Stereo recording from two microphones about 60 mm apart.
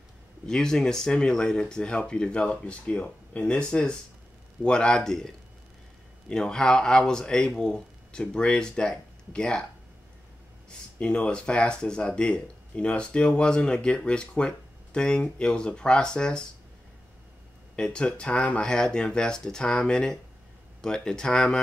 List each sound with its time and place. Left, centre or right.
0.5 s speech: centre
11.0 s speech: centre
17.7 s speech: centre